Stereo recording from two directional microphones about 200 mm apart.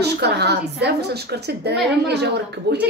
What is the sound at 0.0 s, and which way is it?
A woman's voice, 55° right (ahead or behind).